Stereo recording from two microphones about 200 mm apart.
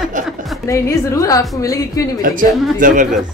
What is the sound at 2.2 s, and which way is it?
Speech, 45° right (ahead or behind).